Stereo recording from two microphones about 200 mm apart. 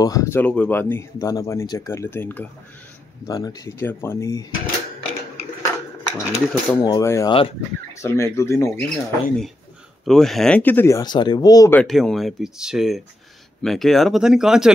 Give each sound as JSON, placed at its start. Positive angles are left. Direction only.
{"t": 0.0, "sound": "speech", "side_deg": 15}
{"t": 5.6, "sound": "a sound", "side_deg": 15}
{"t": 6.8, "sound": "speech", "side_deg": 15}
{"t": 8.8, "sound": "speech", "side_deg": 0}
{"t": 11.8, "sound": "speech", "side_deg": 0}